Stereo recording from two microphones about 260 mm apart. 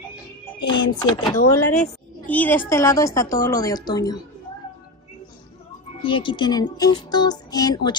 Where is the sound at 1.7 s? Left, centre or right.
Centre.